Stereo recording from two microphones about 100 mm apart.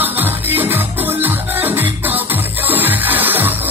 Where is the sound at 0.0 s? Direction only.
20° right (ahead or behind).